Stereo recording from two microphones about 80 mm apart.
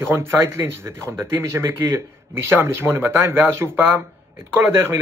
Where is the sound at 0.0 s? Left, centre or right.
Right.